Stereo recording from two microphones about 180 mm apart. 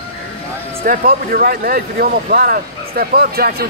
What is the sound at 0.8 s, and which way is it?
Speech, 55° right (ahead or behind).